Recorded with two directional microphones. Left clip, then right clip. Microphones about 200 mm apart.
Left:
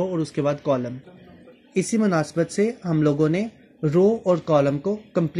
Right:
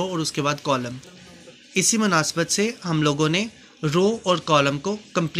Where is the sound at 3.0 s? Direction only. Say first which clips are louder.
Even; 5° left (ahead or behind).